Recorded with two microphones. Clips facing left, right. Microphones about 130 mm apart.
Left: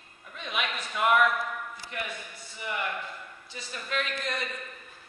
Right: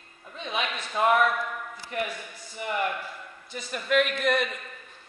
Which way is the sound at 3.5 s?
55° right (ahead or behind).